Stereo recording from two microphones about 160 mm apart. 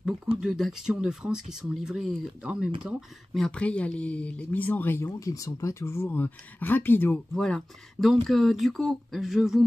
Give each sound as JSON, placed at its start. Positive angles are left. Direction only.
{"t": 0.4, "sound": "speech", "side_deg": -5}